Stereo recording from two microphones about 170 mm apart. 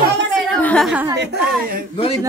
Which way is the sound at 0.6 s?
10° left (ahead or behind).